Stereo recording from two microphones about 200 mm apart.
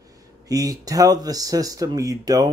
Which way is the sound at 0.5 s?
20° right (ahead or behind).